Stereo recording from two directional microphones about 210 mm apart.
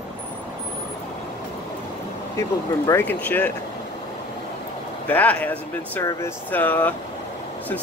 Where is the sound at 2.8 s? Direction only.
10° left (ahead or behind).